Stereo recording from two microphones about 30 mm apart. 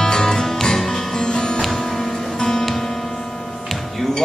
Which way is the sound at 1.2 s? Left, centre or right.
Left.